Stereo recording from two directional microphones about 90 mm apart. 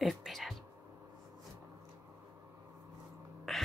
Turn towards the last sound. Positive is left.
turn(degrees=0)  # may be behind; listen again after turning